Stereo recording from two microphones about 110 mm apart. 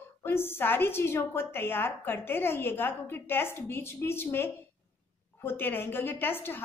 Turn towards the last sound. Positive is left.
turn(degrees=20)  # may be behind; listen again after turning